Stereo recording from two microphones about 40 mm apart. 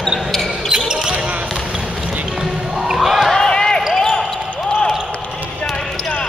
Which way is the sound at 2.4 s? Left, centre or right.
Centre.